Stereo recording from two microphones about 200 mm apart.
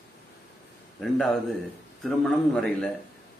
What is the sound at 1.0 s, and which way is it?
A man's voice, centre (ahead or behind).